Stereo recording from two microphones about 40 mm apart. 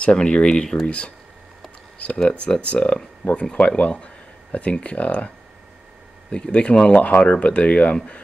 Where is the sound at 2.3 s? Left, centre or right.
Left.